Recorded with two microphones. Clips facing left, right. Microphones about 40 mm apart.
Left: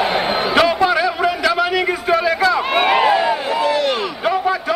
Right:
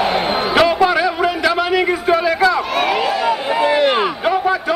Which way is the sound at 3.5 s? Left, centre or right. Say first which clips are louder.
Right 3 dB; right.